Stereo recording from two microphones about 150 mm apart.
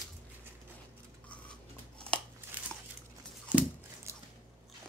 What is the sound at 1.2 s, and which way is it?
Scissors, 10° left (ahead or behind).